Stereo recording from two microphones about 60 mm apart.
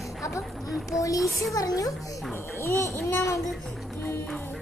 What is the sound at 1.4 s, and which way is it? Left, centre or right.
Speech, left.